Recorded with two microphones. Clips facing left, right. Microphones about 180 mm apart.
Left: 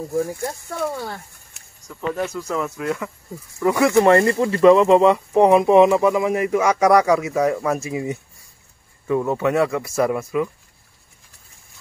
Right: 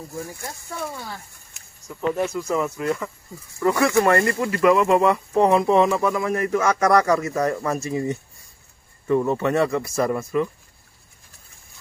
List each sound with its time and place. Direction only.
0.7 s speech: 55° left (ahead or behind)
1.9 s speech: 5° right (ahead or behind)
3.6 s speech: 15° left (ahead or behind)